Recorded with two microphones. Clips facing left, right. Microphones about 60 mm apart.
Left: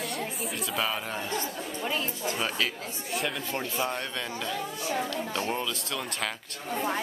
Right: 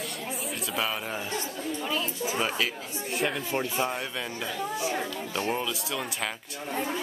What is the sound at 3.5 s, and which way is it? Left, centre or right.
A man's voice, centre.